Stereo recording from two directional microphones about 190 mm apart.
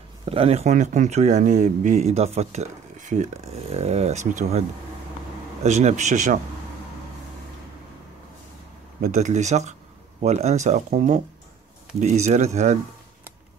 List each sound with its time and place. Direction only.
0.2 s speech: 30° right (ahead or behind)
9.0 s speech: 40° right (ahead or behind)